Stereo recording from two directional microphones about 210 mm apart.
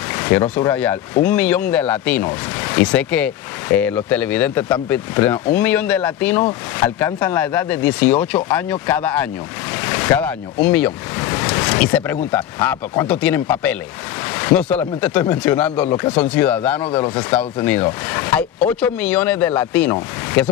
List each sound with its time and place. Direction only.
0.1 s speech: 10° left (ahead or behind)
9.8 s waves: 10° left (ahead or behind)
11.8 s speech: 5° left (ahead or behind)
16.8 s speech: 20° left (ahead or behind)
17.6 s speech: 10° left (ahead or behind)